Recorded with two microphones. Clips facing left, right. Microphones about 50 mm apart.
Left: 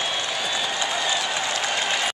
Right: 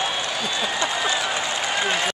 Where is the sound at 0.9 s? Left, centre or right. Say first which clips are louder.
Right 1 dB; centre.